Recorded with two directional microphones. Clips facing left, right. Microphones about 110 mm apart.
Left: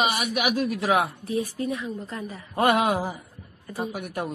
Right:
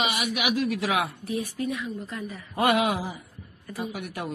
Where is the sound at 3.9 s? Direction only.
45° left (ahead or behind).